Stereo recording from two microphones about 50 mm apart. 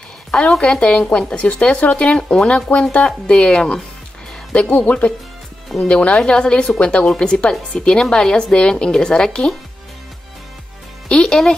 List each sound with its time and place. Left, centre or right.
0.6 s speech: centre
4.6 s a woman's voice: left
11.1 s a woman's voice: centre